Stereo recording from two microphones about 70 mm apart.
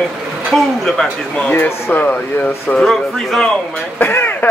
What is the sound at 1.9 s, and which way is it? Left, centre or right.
Speech, left.